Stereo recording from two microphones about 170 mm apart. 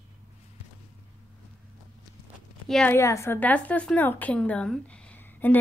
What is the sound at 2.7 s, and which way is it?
A woman's voice, 10° left (ahead or behind).